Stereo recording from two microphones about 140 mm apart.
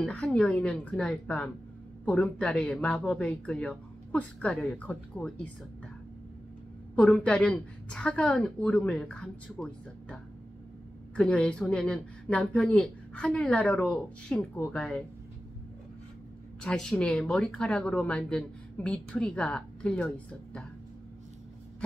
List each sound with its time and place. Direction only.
0.0 s speech: 10° left (ahead or behind)
7.0 s speech: 5° left (ahead or behind)
16.6 s speech: 5° left (ahead or behind)